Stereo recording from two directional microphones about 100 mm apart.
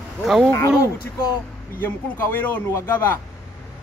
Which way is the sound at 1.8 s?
15° left (ahead or behind).